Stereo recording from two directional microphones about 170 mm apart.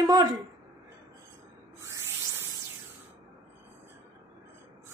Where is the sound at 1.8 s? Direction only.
20° right (ahead or behind).